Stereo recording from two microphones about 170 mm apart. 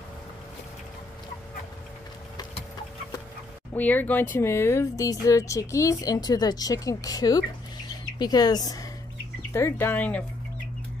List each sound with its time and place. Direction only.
3.7 s speech: 10° left (ahead or behind)